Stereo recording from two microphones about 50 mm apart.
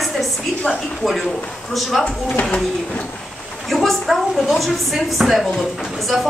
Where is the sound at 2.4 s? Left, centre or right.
Centre.